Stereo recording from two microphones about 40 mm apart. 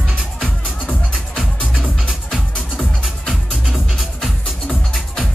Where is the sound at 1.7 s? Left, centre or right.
Right.